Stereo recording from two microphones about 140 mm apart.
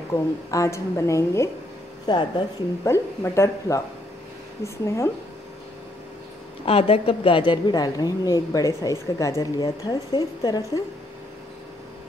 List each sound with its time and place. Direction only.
0.1 s a woman's voice: 25° left (ahead or behind)
2.0 s speech: 35° left (ahead or behind)
2.8 s a woman's voice: 20° left (ahead or behind)
4.8 s a woman's voice: 20° left (ahead or behind)
6.6 s a woman's voice: 45° left (ahead or behind); by 10.6 s 30° left (ahead or behind)